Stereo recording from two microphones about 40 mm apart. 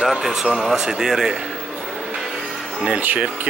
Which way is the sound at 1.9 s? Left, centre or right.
Centre.